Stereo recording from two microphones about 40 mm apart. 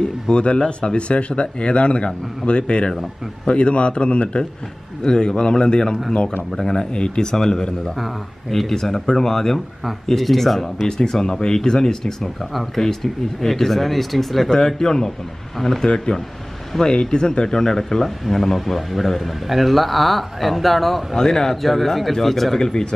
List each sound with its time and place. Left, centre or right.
0.0 s a sound: left
0.7 s speech: left
12.2 s speech: centre
22.6 s speech: centre